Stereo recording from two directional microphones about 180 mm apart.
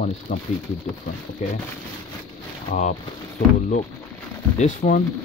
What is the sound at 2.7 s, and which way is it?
Speech, 40° left (ahead or behind).